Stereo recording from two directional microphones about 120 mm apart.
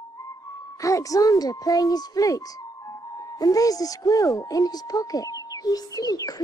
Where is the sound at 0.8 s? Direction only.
25° left (ahead or behind).